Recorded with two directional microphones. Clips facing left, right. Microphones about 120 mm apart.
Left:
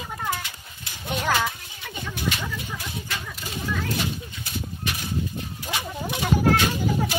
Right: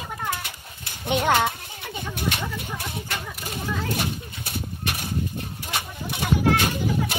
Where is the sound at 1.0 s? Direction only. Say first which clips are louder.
Right 4 dB; 25° right (ahead or behind).